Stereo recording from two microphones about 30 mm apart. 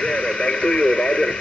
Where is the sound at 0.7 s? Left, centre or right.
Left.